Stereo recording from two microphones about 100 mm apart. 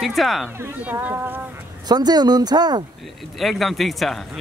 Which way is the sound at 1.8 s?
45° right (ahead or behind).